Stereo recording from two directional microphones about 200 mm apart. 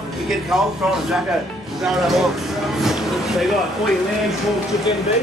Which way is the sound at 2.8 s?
Centre (ahead or behind).